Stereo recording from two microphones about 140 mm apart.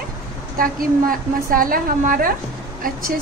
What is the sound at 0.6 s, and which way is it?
A woman's voice, 90° right.